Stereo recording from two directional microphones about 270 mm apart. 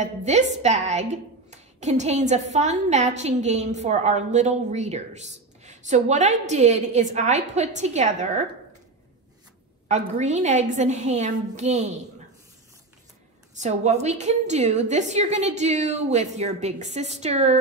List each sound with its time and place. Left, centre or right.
0.0 s a woman's voice: right
9.8 s a woman's voice: right
13.6 s a woman's voice: right